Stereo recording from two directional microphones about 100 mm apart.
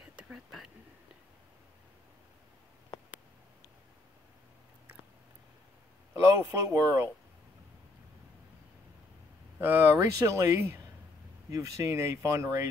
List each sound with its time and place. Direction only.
0.0 s a sound: 10° right (ahead or behind)
6.1 s speech: 30° right (ahead or behind)
9.6 s speech: 25° right (ahead or behind)